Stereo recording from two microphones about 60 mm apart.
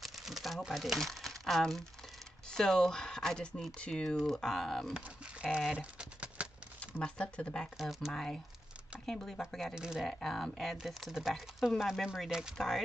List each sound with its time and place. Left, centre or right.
0.0 s speech: centre
4.9 s speech: centre
5.7 s typing: centre
7.2 s speech: centre
7.8 s speech: centre
9.8 s speech: centre
10.0 s speech: centre
12.3 s speech: centre
12.5 s speech: centre